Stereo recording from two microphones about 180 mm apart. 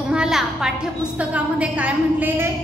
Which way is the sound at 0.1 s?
5° right (ahead or behind).